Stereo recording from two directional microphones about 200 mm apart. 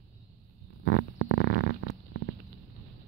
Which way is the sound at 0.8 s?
70° left (ahead or behind).